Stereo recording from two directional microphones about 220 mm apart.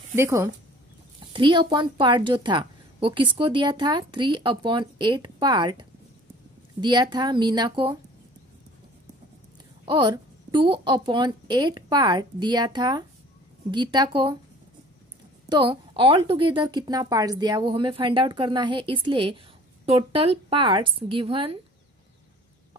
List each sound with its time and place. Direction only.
0.1 s a woman's voice: 10° right (ahead or behind)
9.8 s a woman's voice: 20° right (ahead or behind)
15.4 s a woman's voice: 20° right (ahead or behind)